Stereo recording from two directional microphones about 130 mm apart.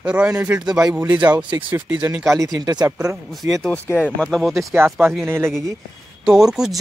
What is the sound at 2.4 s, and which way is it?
Speech, 30° right (ahead or behind).